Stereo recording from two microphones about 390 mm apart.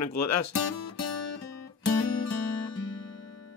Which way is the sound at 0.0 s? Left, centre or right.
Left.